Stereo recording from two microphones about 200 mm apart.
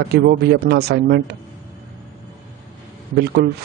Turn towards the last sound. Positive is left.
turn(degrees=-55)  # may be behind; listen again after turning